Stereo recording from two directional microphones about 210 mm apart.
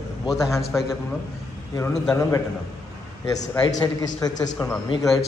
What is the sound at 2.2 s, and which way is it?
Speech, 15° left (ahead or behind).